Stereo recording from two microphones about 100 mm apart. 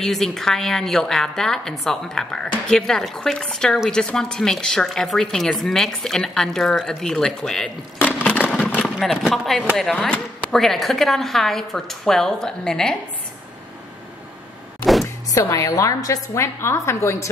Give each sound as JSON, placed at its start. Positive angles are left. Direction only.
{"t": 0.0, "sound": "a woman's voice", "side_deg": 5}
{"t": 8.0, "sound": "a sound", "side_deg": 15}
{"t": 9.0, "sound": "a woman's voice", "side_deg": 0}
{"t": 9.9, "sound": "speech", "side_deg": 15}
{"t": 10.5, "sound": "a woman's voice", "side_deg": 5}
{"t": 15.3, "sound": "a woman's voice", "side_deg": 35}